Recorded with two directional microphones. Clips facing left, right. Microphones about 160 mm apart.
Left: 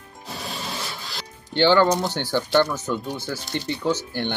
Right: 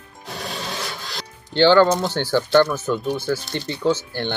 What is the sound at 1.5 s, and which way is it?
Speech, 15° left (ahead or behind).